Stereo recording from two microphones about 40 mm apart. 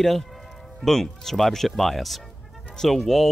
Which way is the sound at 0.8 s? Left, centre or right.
Centre.